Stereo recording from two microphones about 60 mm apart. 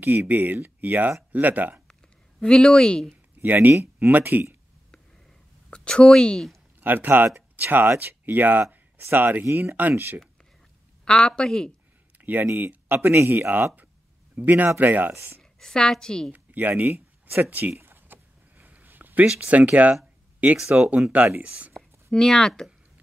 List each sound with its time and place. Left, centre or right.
0.0 s speech: right
2.4 s speech: centre
3.4 s speech: right
5.7 s speech: centre
6.8 s speech: right
11.1 s speech: centre
12.2 s speech: right
15.6 s speech: centre
16.3 s speech: right
17.8 s a sound: right
19.2 s speech: right
20.5 s speech: centre
21.4 s speech: right
22.1 s speech: centre